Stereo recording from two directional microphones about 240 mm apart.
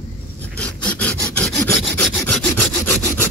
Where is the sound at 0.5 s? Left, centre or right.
Centre.